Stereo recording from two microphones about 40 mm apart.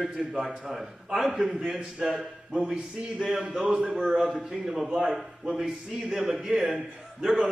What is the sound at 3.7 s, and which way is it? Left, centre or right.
A man's voice, centre.